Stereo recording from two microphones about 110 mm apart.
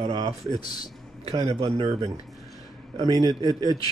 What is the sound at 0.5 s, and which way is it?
Speech, 40° left (ahead or behind).